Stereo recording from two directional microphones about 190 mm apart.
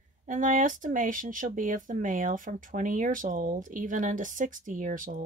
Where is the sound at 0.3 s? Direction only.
45° right (ahead or behind).